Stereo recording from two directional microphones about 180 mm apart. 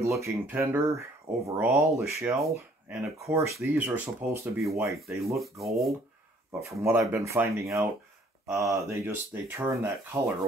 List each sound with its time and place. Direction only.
0.0 s speech: 15° right (ahead or behind)
4.6 s rub: centre (ahead or behind)
6.8 s speech: 15° right (ahead or behind)